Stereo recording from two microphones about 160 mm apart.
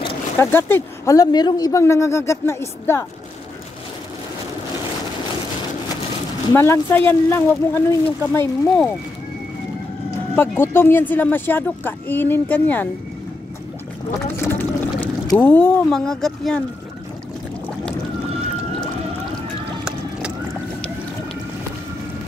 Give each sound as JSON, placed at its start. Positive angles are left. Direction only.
{"t": 0.4, "sound": "speech", "side_deg": 15}
{"t": 6.5, "sound": "speech", "side_deg": 15}
{"t": 10.3, "sound": "speech", "side_deg": 15}
{"t": 14.3, "sound": "speech", "side_deg": 15}
{"t": 19.8, "sound": "boat", "side_deg": -5}